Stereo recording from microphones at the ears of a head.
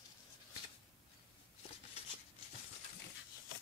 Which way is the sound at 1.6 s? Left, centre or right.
Left.